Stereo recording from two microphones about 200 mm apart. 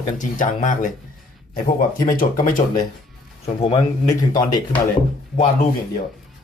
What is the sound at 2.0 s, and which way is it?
Speech, 45° left (ahead or behind).